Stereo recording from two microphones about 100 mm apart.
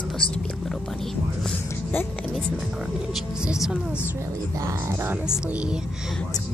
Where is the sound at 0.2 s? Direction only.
60° left (ahead or behind).